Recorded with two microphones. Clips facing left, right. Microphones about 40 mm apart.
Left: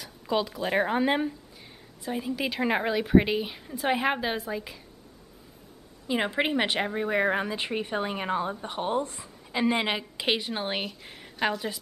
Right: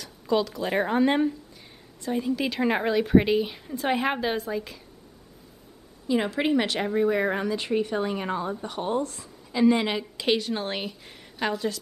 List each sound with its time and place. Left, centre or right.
0.0 s a sound: centre
0.7 s speech: centre
6.0 s speech: left